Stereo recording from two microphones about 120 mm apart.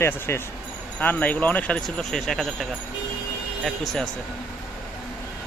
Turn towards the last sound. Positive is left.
turn(degrees=5)  # may be behind; listen again after turning